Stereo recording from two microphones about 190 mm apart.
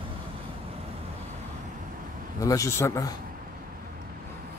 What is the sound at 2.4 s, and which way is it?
Speech, 15° left (ahead or behind).